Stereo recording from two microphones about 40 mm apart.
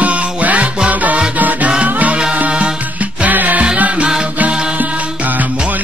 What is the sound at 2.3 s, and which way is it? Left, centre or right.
Music, right.